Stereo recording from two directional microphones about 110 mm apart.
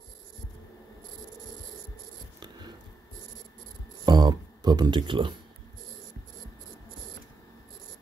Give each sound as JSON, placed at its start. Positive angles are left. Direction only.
{"t": 4.0, "sound": "music", "side_deg": -40}